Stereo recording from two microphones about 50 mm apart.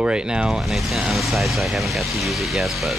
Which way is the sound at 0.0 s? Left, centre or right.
Centre.